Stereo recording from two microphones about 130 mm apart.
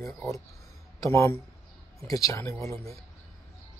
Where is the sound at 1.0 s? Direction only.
25° left (ahead or behind).